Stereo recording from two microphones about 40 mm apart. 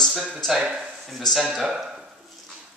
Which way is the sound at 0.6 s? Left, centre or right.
Right.